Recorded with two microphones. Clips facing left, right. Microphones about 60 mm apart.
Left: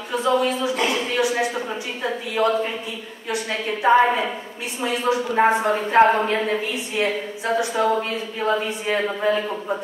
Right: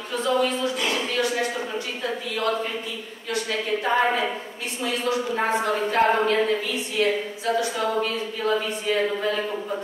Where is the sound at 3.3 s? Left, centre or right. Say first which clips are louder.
Even; centre.